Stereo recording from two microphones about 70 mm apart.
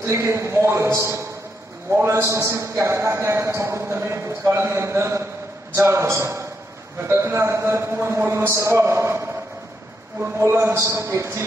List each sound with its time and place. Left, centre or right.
0.0 s a man's voice: right